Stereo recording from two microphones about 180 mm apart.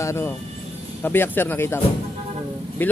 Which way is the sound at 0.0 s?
15° left (ahead or behind).